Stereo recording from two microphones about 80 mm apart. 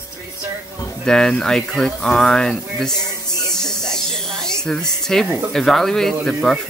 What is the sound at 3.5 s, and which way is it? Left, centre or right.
Snake, centre.